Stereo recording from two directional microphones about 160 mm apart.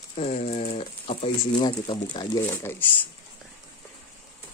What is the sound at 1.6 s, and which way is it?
Speech, 30° left (ahead or behind).